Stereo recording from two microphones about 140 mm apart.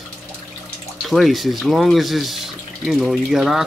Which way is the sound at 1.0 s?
Centre (ahead or behind).